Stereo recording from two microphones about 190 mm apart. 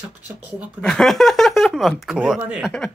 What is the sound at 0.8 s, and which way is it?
Speech, 5° left (ahead or behind).